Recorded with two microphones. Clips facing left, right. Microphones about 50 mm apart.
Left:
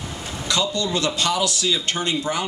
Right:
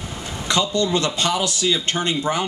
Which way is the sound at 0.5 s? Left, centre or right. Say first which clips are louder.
Right 3 dB; right.